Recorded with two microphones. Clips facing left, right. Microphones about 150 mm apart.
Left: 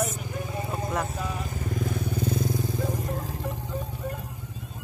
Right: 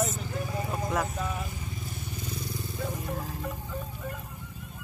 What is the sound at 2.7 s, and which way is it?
Vehicle, 40° left (ahead or behind).